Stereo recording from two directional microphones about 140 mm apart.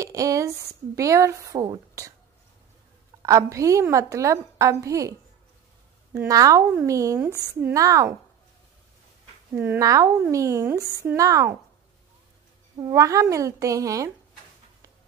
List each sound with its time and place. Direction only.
0.0 s speech: 25° right (ahead or behind)
3.2 s speech: 20° right (ahead or behind)
6.2 s speech: 25° right (ahead or behind)
9.6 s speech: 20° right (ahead or behind)
12.7 s speech: 25° right (ahead or behind)